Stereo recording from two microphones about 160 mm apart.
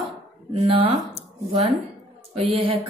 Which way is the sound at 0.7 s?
35° right (ahead or behind).